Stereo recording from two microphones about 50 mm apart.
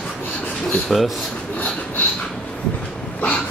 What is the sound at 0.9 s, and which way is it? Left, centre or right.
Speech, centre.